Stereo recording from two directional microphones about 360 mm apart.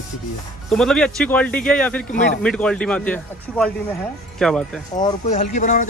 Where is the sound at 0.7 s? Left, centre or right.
Centre.